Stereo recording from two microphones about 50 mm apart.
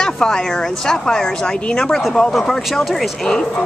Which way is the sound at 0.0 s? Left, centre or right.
Centre.